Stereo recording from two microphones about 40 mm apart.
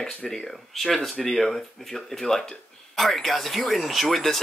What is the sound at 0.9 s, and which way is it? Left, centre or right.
Speech, centre.